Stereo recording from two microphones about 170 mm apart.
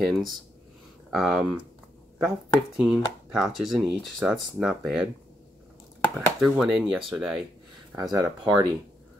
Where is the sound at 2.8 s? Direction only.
5° right (ahead or behind).